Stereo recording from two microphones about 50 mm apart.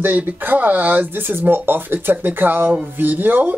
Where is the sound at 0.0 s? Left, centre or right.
Right.